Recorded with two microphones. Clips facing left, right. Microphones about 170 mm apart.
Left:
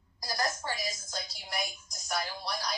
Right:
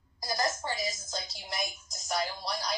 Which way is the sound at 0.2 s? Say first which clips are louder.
Right 2 dB; 25° right (ahead or behind).